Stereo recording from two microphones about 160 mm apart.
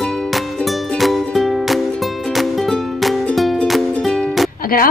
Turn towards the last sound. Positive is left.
turn(degrees=65)  # may be behind; listen again after turning